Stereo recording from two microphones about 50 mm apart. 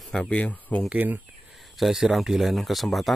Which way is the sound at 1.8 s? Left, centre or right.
Centre.